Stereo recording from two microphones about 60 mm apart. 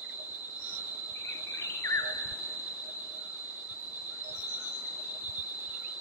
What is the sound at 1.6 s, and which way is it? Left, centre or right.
Cricket, left.